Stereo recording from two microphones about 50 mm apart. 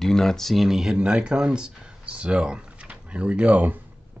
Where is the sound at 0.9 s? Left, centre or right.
Centre.